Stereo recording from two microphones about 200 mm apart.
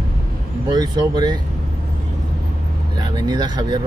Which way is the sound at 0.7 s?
20° right (ahead or behind).